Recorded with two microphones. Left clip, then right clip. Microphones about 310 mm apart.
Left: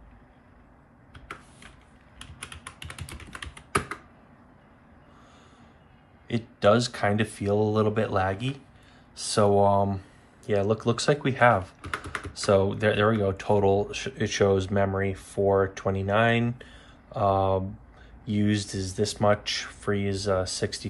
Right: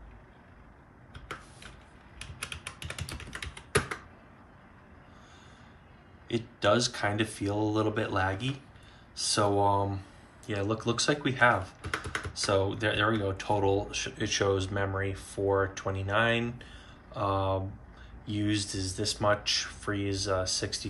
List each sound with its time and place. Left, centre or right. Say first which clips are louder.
6.2 s speech: left 5 dB; left